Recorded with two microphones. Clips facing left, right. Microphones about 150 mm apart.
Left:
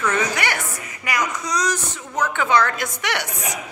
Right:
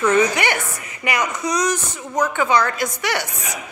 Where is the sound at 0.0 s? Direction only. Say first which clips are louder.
Right 5 dB; 20° right (ahead or behind).